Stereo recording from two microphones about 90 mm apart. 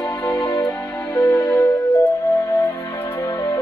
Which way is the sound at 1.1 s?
40° left (ahead or behind).